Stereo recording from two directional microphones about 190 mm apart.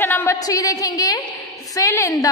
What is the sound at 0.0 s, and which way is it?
A woman's voice, 10° left (ahead or behind).